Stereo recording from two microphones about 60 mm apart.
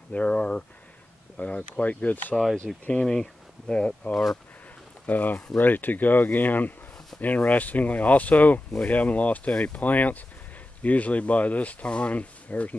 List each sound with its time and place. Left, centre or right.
0.1 s speech: left
2.5 s speech: centre
5.0 s speech: left